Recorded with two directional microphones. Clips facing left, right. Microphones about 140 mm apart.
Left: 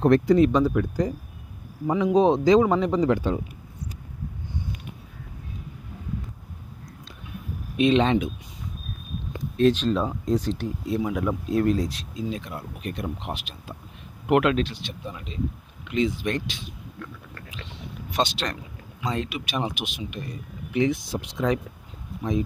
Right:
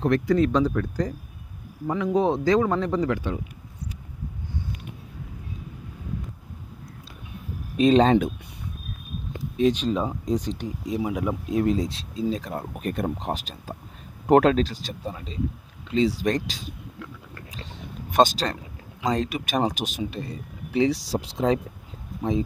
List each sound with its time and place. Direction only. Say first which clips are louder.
0.3 s speech: left 2 dB; 15° left (ahead or behind)
3.1 s speech: left 4 dB; 35° left (ahead or behind)
7.7 s speech: right 3 dB; 40° right (ahead or behind)
9.6 s speech: left 1 dB; 15° right (ahead or behind); by 16.6 s 40° right (ahead or behind)
17.5 s a sound: even; 40° right (ahead or behind)
19.0 s speech: right 4 dB; 40° right (ahead or behind)